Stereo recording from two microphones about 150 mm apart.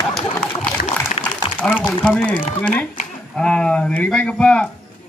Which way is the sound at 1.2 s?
40° left (ahead or behind).